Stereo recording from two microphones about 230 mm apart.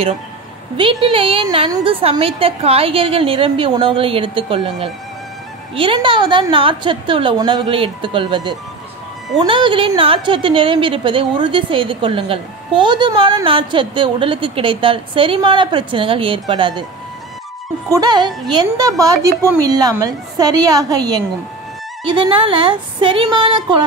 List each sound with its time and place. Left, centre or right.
0.7 s a woman's voice: right
17.8 s a woman's voice: centre